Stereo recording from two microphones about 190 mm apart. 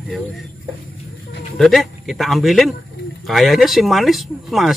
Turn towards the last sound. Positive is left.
turn(degrees=0)  # may be behind; listen again after turning